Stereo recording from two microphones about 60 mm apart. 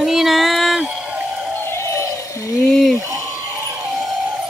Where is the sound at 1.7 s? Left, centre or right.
Left.